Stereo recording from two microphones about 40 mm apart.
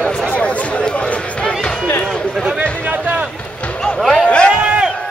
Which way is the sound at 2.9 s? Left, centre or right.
Right.